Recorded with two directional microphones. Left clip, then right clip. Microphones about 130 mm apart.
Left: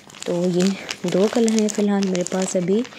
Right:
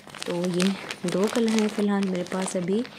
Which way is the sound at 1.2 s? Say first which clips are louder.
Left 5 dB; 20° left (ahead or behind).